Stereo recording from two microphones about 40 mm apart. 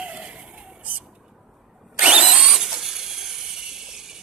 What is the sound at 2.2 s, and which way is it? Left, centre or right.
Vehicle, centre.